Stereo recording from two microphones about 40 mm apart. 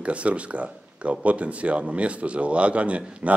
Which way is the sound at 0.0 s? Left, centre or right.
Right.